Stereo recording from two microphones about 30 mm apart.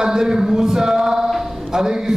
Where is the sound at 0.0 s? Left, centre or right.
Right.